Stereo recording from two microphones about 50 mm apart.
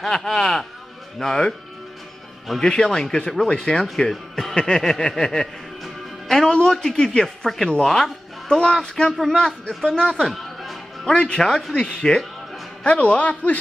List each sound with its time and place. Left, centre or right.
0.0 s speech: centre
2.6 s speech: centre
4.1 s speech: centre
4.6 s a man's voice: centre
7.5 s speech: centre
10.2 s music: centre
11.1 s speech: centre
12.8 s a man's voice: left